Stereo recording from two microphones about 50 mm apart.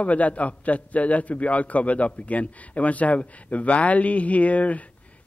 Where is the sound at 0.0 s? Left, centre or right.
Left.